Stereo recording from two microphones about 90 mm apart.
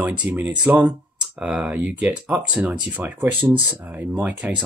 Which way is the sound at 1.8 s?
15° right (ahead or behind).